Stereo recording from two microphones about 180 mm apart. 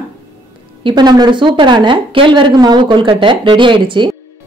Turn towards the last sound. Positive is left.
turn(degrees=-25)  # may be behind; listen again after turning